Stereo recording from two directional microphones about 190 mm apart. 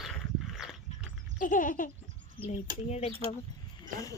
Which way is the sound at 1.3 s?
45° left (ahead or behind).